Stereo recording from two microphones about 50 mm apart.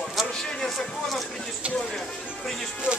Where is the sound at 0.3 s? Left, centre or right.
Centre.